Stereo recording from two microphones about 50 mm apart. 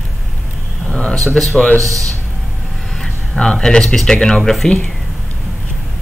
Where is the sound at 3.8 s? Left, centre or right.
Centre.